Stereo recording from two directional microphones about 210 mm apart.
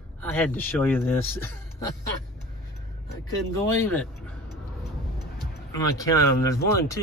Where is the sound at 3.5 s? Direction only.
10° left (ahead or behind).